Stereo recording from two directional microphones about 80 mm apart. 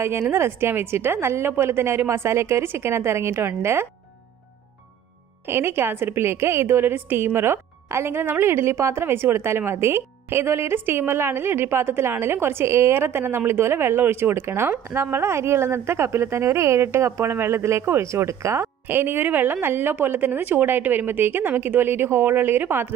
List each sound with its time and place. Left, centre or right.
0.0 s a woman's voice: right
5.5 s a woman's voice: right